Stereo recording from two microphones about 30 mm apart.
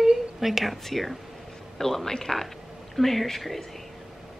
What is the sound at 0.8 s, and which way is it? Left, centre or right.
Speech, centre.